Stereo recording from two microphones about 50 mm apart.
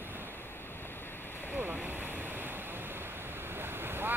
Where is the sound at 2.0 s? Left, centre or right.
Right.